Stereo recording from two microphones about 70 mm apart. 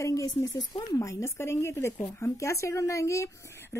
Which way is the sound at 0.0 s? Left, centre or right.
Left.